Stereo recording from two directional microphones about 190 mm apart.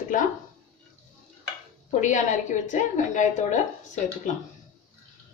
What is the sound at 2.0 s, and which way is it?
A woman's voice, 40° left (ahead or behind).